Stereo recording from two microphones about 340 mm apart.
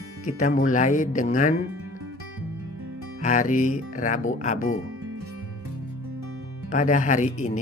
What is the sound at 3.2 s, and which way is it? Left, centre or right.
Speech, left.